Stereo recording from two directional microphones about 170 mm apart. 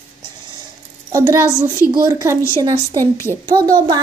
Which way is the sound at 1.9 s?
20° right (ahead or behind).